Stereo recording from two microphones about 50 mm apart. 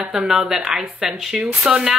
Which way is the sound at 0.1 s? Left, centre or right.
Centre.